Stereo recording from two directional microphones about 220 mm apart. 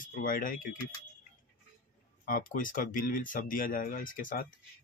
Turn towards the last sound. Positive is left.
turn(degrees=40)  # may be behind; listen again after turning